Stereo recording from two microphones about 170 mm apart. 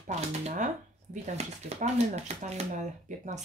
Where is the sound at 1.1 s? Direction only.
45° right (ahead or behind).